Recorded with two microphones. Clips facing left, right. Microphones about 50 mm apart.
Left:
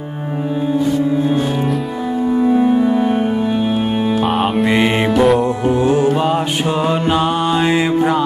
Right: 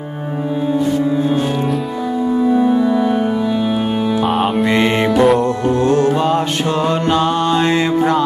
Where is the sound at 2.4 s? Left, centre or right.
Centre.